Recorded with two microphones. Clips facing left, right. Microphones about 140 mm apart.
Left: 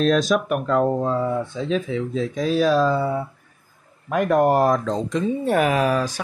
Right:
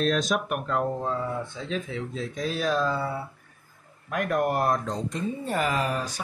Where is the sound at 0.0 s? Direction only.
90° left.